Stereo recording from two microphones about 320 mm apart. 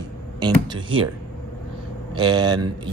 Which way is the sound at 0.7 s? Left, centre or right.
Centre.